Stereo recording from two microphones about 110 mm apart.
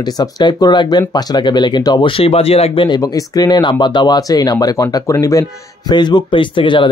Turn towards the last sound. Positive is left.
turn(degrees=45)  # may be behind; listen again after turning